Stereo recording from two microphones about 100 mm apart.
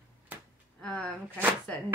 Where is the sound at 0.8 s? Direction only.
10° left (ahead or behind).